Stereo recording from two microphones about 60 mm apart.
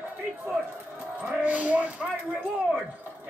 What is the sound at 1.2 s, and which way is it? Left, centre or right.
Speech, right.